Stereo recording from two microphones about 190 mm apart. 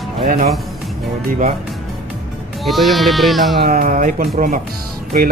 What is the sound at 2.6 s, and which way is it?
Speech, centre (ahead or behind).